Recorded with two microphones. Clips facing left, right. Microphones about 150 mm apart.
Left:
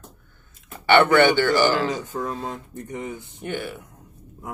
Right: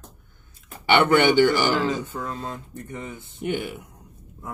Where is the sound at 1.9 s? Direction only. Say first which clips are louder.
Left 1 dB; 15° left (ahead or behind).